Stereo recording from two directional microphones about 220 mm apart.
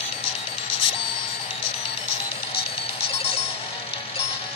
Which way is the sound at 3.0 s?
25° left (ahead or behind).